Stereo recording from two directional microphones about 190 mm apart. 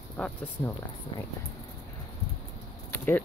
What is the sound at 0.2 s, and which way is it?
Speech, 5° left (ahead or behind).